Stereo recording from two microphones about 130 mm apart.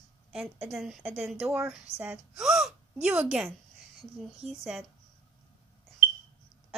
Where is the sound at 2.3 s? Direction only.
Centre (ahead or behind).